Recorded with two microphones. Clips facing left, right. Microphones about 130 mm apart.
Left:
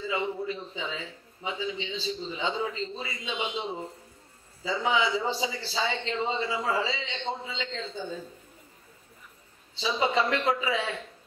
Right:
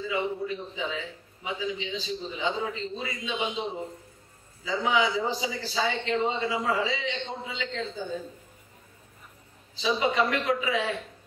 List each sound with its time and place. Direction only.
0.1 s a man's voice: 30° left (ahead or behind)
4.6 s a man's voice: 30° left (ahead or behind)
9.8 s a man's voice: 30° left (ahead or behind)